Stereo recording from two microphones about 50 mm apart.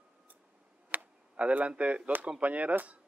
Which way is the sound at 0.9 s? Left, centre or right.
Right.